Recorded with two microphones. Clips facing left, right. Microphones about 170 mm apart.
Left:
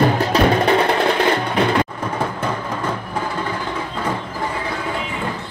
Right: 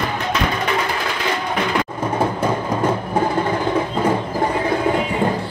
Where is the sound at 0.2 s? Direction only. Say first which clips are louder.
Left 6 dB; 35° left (ahead or behind).